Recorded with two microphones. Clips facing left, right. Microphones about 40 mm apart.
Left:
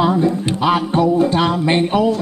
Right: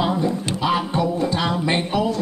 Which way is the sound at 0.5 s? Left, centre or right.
Left.